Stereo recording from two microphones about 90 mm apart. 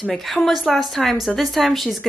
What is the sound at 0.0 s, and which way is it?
A woman's voice, centre (ahead or behind).